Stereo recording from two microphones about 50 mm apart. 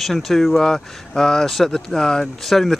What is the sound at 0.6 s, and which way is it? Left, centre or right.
Speech, centre.